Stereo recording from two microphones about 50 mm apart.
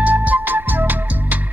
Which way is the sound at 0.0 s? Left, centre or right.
Right.